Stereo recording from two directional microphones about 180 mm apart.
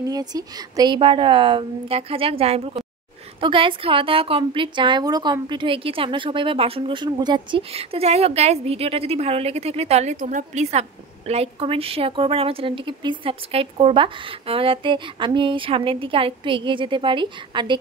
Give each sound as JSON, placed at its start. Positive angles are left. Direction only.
{"t": 0.1, "sound": "a woman's voice", "side_deg": -20}